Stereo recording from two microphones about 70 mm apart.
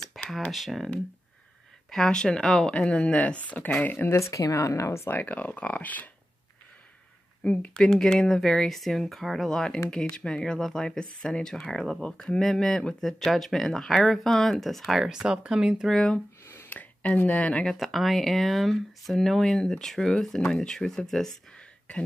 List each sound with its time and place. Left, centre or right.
0.2 s a sound: centre
0.5 s speech: centre
1.9 s speech: centre
4.1 s speech: left
5.1 s speech: left
7.4 s speech: centre
15.9 s speech: centre
16.4 s a sound: left
17.6 s speech: centre